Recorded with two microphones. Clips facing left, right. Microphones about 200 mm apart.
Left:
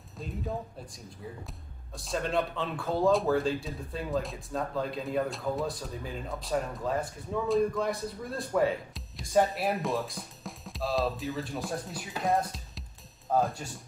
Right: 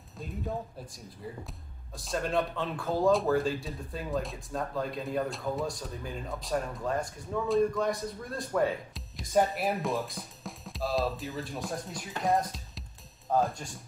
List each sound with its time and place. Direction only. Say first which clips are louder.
2.0 s speech: even; centre (ahead or behind)